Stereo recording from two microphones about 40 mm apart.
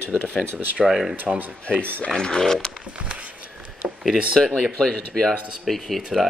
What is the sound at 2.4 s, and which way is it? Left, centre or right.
Speech, centre.